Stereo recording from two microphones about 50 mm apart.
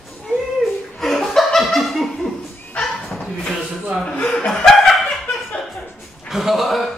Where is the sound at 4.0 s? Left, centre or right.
Left.